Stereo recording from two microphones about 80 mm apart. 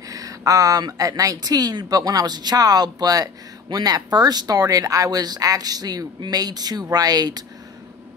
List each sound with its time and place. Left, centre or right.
0.1 s speech: right